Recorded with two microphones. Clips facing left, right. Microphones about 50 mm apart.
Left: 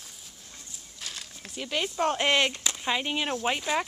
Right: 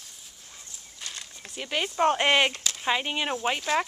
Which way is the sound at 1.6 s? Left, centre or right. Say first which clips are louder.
Right 3 dB; centre.